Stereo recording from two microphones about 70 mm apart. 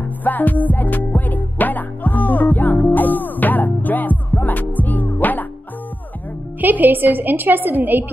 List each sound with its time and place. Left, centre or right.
0.2 s music: left
6.6 s a woman's voice: right